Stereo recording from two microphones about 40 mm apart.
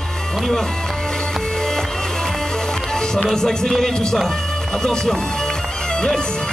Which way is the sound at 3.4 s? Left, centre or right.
Centre.